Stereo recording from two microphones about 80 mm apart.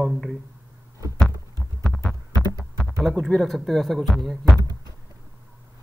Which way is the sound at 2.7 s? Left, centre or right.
Centre.